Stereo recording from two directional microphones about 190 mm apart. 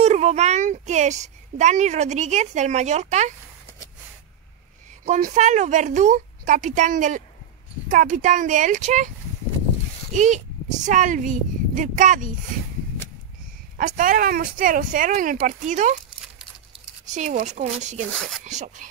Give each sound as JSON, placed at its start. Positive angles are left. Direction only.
{"t": 0.0, "sound": "a child's voice", "side_deg": -35}
{"t": 5.0, "sound": "a child's voice", "side_deg": -40}
{"t": 10.1, "sound": "a child's voice", "side_deg": -40}
{"t": 13.7, "sound": "speech", "side_deg": -45}
{"t": 17.1, "sound": "a child's voice", "side_deg": -40}